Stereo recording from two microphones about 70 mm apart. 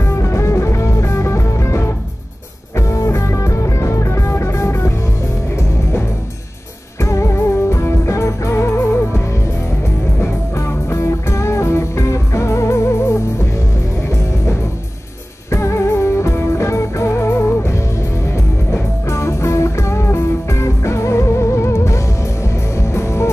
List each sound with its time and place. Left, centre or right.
0.0 s music: left
2.9 s music: left
7.0 s music: left
10.2 s music: left
15.5 s music: left
19.0 s music: left